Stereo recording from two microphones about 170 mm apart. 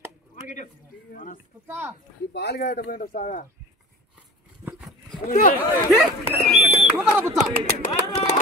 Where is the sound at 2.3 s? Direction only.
75° left (ahead or behind); by 3.4 s 45° left (ahead or behind).